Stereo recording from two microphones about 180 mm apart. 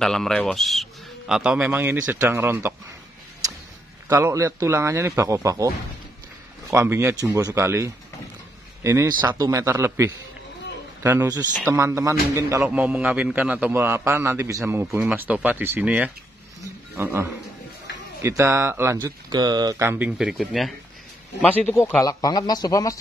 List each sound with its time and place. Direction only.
0.0 s a man's voice: 5° left (ahead or behind); by 2.7 s 10° right (ahead or behind)
4.1 s a man's voice: 15° right (ahead or behind)
6.7 s a man's voice: 15° right (ahead or behind)
21.4 s a man's voice: 10° left (ahead or behind)